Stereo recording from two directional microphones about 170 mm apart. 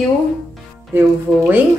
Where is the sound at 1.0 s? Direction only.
10° right (ahead or behind).